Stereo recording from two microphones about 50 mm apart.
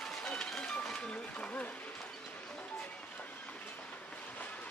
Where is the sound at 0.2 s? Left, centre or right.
Centre.